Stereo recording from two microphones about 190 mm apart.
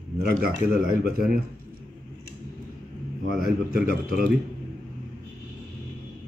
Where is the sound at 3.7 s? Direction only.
50° right (ahead or behind).